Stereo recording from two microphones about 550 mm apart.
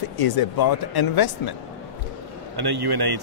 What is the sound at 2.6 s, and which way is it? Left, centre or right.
Speech, right.